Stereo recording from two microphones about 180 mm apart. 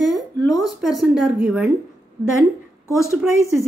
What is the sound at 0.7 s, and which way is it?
Speech, centre (ahead or behind).